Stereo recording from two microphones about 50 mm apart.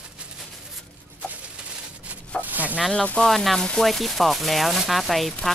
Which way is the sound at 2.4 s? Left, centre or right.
Right.